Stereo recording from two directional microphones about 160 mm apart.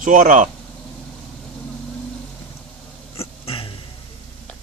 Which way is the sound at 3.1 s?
35° left (ahead or behind).